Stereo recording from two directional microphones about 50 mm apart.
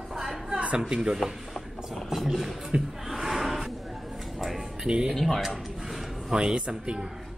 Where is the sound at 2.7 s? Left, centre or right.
Centre.